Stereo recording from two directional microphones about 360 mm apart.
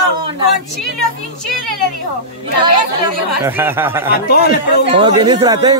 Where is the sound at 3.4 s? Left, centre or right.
Centre.